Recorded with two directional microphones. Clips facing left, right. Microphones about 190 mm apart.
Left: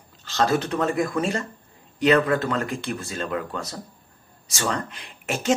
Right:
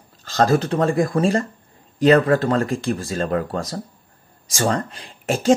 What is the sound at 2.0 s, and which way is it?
A man's voice, 35° right (ahead or behind).